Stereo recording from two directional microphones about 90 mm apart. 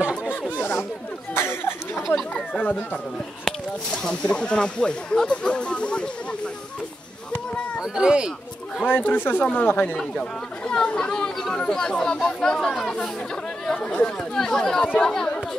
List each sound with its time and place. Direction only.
0.2 s chatter: 15° left (ahead or behind)
1.3 s a sound: 25° left (ahead or behind)
2.3 s speech: 15° left (ahead or behind)
7.8 s speech: 10° right (ahead or behind)
8.8 s speech: 20° left (ahead or behind)